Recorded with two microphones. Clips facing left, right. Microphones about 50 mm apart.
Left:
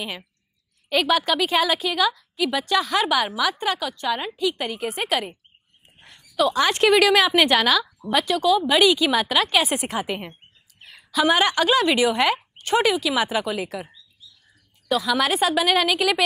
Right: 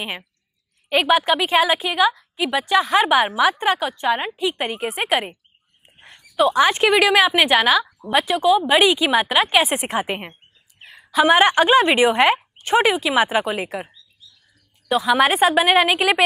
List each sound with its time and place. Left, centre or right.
0.8 s speech: right
5.9 s a sound: right
6.3 s speech: right
14.9 s a woman's voice: right